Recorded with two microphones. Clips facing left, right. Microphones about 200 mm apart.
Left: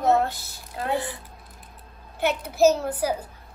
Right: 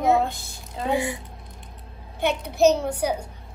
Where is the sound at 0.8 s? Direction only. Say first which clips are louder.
Right 3 dB; 10° right (ahead or behind).